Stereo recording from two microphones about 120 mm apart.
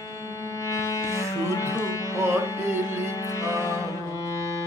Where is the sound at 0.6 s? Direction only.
25° left (ahead or behind).